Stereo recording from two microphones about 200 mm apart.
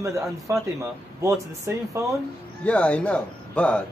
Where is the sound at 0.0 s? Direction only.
15° right (ahead or behind).